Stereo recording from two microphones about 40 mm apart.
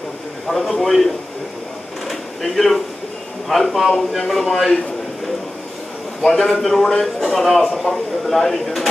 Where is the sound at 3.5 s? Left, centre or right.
Centre.